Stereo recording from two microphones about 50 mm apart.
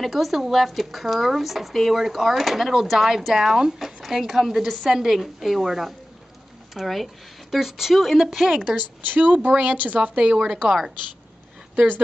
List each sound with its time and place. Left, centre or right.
0.0 s speech: centre
8.7 s speech: right
10.1 s speech: centre